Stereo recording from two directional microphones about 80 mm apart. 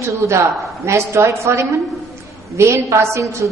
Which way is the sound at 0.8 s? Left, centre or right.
Right.